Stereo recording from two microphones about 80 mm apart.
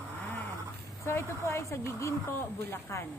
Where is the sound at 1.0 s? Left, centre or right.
Left.